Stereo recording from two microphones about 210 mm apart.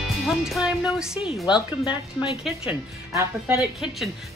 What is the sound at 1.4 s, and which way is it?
Speech, 20° left (ahead or behind).